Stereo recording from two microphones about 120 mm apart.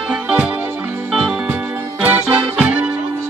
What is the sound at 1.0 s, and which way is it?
Music, 5° right (ahead or behind).